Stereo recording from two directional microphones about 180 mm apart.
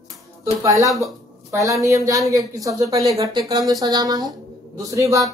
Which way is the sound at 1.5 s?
20° right (ahead or behind).